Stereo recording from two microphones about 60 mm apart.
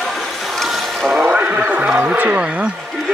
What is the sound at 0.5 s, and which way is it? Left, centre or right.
Boat, centre.